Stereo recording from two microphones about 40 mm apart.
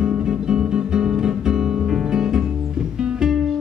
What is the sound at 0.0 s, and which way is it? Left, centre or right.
Music, right.